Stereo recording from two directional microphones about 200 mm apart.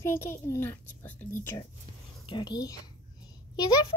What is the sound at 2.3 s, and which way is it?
Speech, 20° left (ahead or behind).